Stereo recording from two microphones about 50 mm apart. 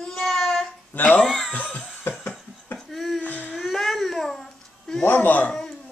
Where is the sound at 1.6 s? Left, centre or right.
Left.